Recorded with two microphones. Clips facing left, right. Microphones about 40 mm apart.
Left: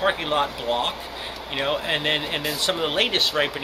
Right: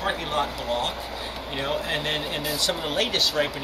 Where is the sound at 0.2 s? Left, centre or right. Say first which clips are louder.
Left 3 dB; left.